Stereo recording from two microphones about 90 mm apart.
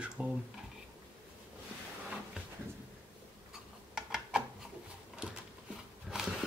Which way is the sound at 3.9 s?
5° right (ahead or behind).